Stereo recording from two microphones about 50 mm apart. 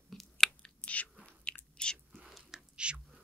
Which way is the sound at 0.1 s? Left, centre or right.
Centre.